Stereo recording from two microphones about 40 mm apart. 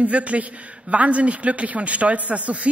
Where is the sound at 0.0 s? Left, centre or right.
Right.